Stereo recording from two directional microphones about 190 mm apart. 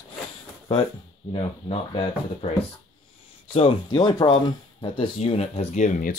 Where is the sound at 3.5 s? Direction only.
30° left (ahead or behind).